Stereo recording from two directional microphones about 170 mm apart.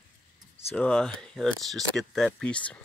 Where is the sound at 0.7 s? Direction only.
5° left (ahead or behind).